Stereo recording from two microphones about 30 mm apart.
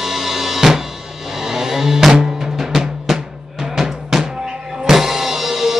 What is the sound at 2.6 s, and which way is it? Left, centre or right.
Drum, centre.